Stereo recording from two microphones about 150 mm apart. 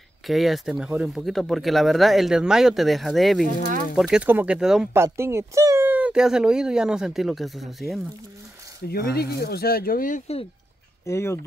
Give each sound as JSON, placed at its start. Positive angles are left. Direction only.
{"t": 0.3, "sound": "speech", "side_deg": 0}
{"t": 4.9, "sound": "speech", "side_deg": -15}
{"t": 8.8, "sound": "speech", "side_deg": 90}
{"t": 11.1, "sound": "speech", "side_deg": 15}